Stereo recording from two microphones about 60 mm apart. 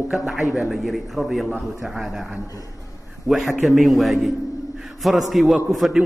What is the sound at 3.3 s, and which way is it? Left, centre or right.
A man's voice, centre.